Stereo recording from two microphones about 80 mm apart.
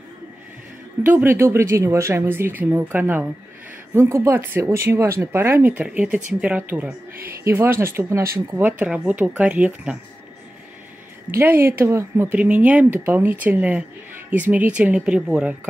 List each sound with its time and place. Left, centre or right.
1.0 s speech: right
7.4 s speech: right
8.6 s speech: centre
11.4 s speech: right
12.3 s speech: centre